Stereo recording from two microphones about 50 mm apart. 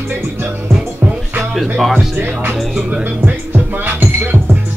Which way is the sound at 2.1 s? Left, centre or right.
Right.